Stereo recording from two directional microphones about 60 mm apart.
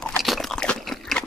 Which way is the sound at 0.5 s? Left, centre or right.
Centre.